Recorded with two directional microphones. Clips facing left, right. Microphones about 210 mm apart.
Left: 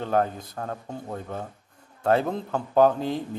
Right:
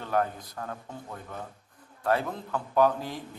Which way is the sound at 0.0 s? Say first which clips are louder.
Left 4 dB; 30° left (ahead or behind).